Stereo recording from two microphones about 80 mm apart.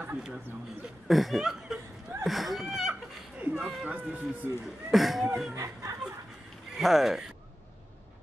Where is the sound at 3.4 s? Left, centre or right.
Centre.